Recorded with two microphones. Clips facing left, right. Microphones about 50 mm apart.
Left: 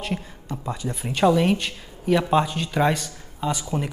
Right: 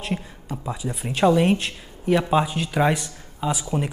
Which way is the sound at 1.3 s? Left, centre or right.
Centre.